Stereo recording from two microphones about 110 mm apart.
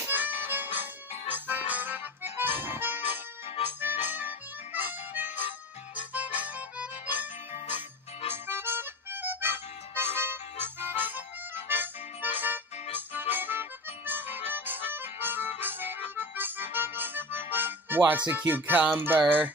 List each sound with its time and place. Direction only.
0.0 s harmonica: 15° right (ahead or behind)
1.3 s accordion: 15° right (ahead or behind)
3.8 s harmonica: 15° right (ahead or behind)
8.3 s music: 20° right (ahead or behind)
12.9 s accordion: 15° right (ahead or behind)
14.5 s harmonica: 20° right (ahead or behind)
15.6 s music: 20° right (ahead or behind)